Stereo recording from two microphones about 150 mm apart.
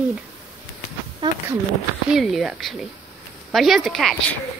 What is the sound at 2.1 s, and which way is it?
A woman's voice, centre (ahead or behind).